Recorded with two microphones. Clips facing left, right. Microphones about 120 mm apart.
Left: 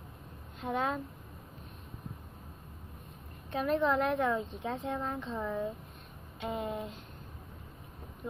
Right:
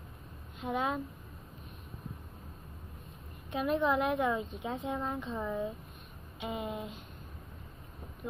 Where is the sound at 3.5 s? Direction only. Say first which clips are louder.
Even; 5° right (ahead or behind).